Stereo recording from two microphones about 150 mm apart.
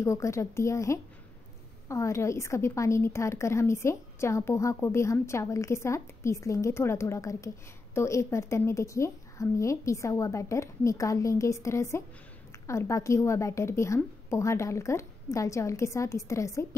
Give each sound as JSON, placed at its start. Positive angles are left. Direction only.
{"t": 0.0, "sound": "a woman's voice", "side_deg": 20}